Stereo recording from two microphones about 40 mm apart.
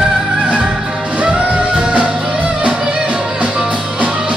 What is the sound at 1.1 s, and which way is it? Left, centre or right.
Music, right.